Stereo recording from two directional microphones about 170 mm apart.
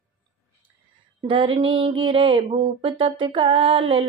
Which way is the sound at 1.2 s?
30° right (ahead or behind).